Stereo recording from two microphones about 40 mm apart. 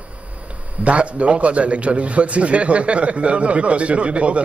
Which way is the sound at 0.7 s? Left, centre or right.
Right.